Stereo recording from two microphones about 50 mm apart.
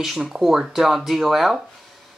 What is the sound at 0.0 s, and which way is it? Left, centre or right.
Speech, centre.